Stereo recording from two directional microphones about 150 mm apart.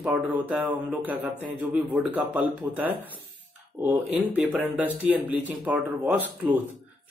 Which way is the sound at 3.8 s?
10° right (ahead or behind).